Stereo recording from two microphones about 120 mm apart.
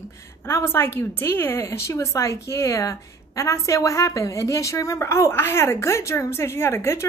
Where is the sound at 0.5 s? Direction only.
20° left (ahead or behind).